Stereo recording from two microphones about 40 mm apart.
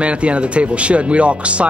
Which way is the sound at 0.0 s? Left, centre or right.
Right.